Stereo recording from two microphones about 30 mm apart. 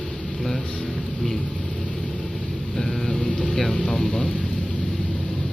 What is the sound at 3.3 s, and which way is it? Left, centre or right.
Vehicle, left.